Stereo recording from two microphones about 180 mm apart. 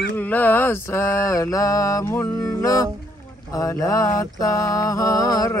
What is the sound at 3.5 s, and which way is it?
Mantra, 20° left (ahead or behind).